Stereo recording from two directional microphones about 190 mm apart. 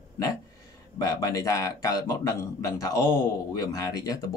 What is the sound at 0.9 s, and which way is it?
A man's voice, 20° left (ahead or behind).